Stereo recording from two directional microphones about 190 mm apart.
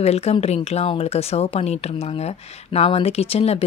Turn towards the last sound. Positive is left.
turn(degrees=30)  # may be behind; listen again after turning